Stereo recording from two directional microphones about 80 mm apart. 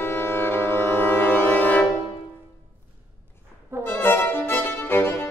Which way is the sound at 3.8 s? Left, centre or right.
Left.